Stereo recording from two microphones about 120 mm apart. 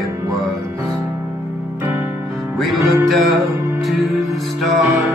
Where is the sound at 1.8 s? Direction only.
15° right (ahead or behind).